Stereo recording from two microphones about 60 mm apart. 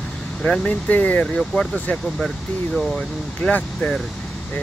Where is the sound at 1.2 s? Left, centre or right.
Centre.